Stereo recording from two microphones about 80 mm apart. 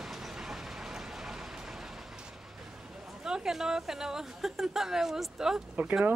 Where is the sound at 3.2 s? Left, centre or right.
Centre.